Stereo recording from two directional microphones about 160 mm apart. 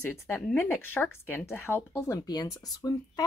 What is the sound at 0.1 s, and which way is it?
Speech, 15° left (ahead or behind).